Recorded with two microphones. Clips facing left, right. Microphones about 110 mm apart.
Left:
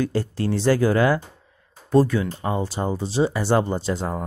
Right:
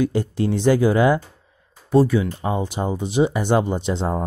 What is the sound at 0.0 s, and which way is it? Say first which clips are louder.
Speech: right 3 dB; 15° right (ahead or behind).